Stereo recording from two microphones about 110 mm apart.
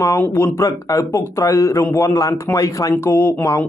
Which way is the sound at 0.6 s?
30° left (ahead or behind).